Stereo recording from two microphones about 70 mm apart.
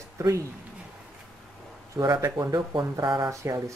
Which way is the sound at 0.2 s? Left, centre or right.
Right.